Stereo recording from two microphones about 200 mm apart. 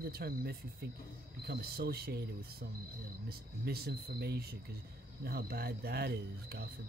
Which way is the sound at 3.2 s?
50° right (ahead or behind).